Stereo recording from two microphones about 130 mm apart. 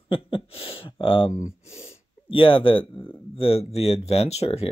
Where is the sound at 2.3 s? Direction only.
40° left (ahead or behind).